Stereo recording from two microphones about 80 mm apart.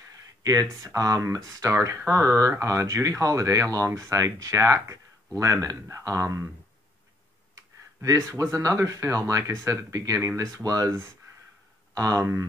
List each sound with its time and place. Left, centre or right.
0.4 s speech: right
7.5 s a sound: right
8.3 s speech: right
11.9 s speech: right